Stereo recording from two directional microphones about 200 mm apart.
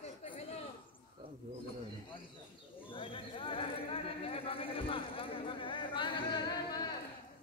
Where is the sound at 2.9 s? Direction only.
25° left (ahead or behind).